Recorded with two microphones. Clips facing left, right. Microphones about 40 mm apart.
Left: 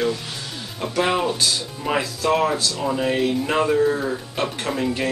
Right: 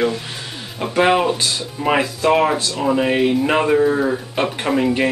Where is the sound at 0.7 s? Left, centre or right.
Right.